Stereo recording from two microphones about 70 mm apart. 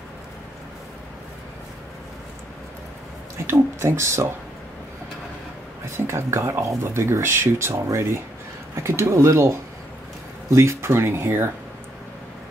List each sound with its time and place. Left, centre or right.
3.4 s speech: right
5.9 s speech: right
10.5 s speech: right